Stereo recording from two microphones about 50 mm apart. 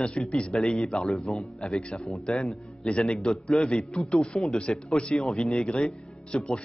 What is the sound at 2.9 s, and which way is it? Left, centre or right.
A man's voice, centre.